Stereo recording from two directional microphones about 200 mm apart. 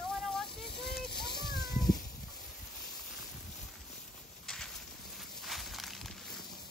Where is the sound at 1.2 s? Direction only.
20° left (ahead or behind).